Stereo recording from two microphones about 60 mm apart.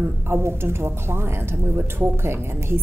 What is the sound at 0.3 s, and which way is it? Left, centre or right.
A woman's voice, right.